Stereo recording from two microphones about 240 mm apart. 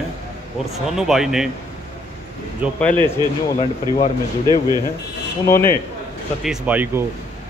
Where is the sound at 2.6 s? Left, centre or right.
Centre.